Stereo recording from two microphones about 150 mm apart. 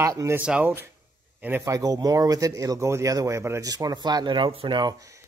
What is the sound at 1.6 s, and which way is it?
Speech, 25° right (ahead or behind).